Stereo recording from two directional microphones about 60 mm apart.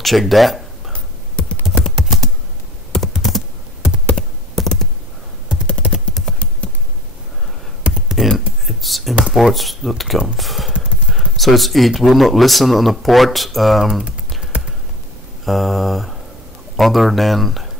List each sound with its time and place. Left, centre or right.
0.0 s a sound: centre
0.9 s a sound: centre
2.0 s typing: centre
3.2 s computer keyboard: centre
4.6 s computer keyboard: centre
6.2 s computer keyboard: centre
6.6 s a sound: centre
7.8 s computer keyboard: centre
8.6 s a sound: centre
9.2 s speech: centre
15.4 s mantra: centre
16.7 s speech: centre